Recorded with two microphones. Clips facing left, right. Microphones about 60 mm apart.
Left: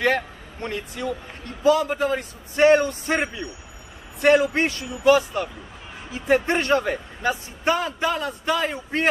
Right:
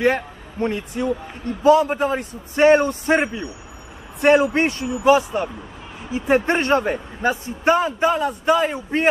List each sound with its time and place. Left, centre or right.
0.0 s a man's voice: right